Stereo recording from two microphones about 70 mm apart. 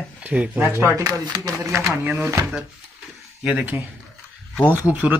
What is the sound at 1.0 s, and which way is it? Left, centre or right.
Speech, right.